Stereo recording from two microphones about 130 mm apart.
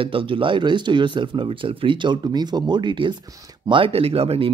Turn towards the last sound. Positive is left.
turn(degrees=-50)  # may be behind; listen again after turning